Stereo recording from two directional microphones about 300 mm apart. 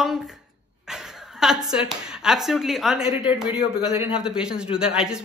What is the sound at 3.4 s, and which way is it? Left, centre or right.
Speech, centre.